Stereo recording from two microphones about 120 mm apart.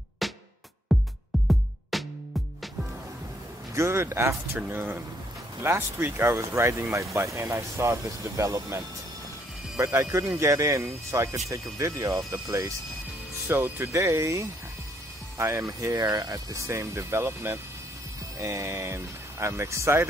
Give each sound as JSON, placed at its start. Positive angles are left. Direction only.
{"t": 0.2, "sound": "music", "side_deg": 0}
{"t": 3.7, "sound": "speech", "side_deg": -25}
{"t": 9.9, "sound": "speech", "side_deg": -25}